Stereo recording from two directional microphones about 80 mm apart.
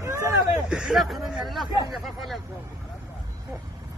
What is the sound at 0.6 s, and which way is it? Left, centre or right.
Speech, centre.